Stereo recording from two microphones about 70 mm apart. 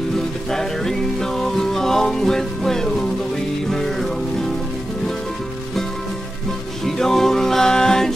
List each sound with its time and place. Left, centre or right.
0.5 s music: centre
7.0 s music: centre